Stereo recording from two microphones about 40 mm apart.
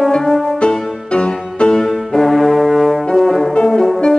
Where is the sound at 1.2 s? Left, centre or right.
Left.